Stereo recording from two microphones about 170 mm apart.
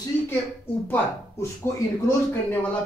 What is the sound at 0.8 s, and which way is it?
Speech, 15° left (ahead or behind).